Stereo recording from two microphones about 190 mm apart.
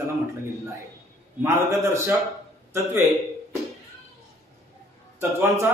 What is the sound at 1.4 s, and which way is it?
Speech, 15° right (ahead or behind).